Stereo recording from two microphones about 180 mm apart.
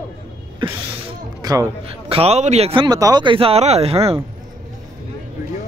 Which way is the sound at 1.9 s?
30° right (ahead or behind).